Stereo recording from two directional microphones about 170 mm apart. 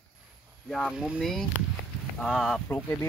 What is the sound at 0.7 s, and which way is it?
Speech, centre (ahead or behind).